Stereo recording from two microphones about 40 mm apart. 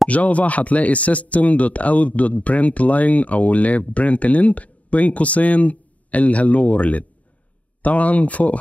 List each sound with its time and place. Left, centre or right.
0.1 s speech: left